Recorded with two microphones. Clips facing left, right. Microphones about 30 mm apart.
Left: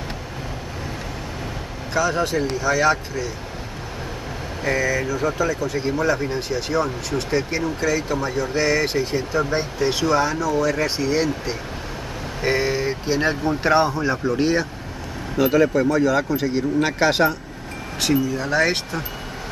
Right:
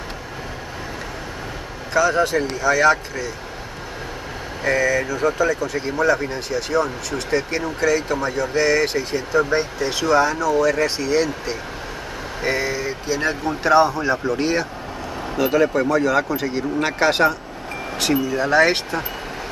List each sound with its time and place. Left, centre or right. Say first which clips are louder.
2.0 s speech: right 3 dB; centre
4.6 s speech: right 2 dB; centre
9.4 s speech: right 5 dB; centre
9.8 s speech: even; centre
12.4 s speech: left 2 dB; centre
16.3 s speech: left 2 dB; centre
18.3 s speech: right 4 dB; centre